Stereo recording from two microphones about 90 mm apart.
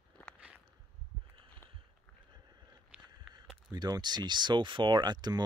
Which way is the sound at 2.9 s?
15° right (ahead or behind).